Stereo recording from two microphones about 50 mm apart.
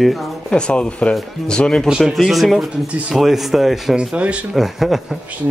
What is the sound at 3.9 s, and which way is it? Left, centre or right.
Speech, right.